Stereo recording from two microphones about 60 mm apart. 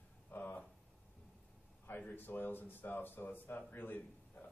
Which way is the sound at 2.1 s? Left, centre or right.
Left.